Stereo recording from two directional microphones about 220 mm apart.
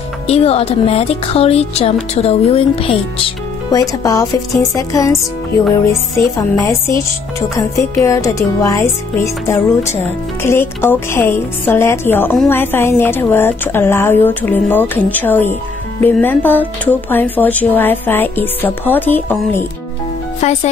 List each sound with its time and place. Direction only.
0.3 s speech: 25° left (ahead or behind)
4.0 s a woman's voice: 15° left (ahead or behind)
20.3 s speech: 30° left (ahead or behind)